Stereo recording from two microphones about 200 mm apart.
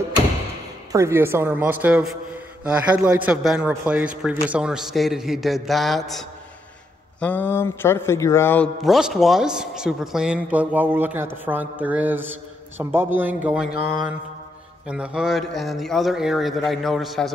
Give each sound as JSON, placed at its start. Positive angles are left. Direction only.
{"t": 0.9, "sound": "a man's voice", "side_deg": -15}
{"t": 8.8, "sound": "a man's voice", "side_deg": 0}